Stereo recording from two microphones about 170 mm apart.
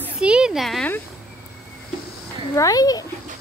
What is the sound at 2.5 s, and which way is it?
Speech, 20° left (ahead or behind).